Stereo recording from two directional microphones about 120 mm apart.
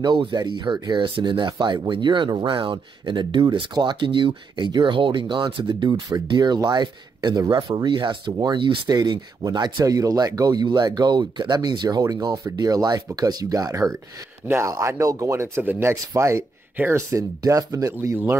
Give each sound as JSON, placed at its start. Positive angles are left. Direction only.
{"t": 0.0, "sound": "speech", "side_deg": -40}